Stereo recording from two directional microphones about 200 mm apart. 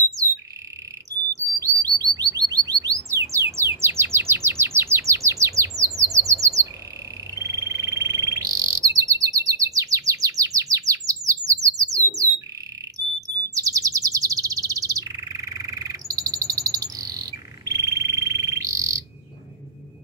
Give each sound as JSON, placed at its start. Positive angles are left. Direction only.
{"t": 1.3, "sound": "bird", "side_deg": -15}
{"t": 13.6, "sound": "bird", "side_deg": -15}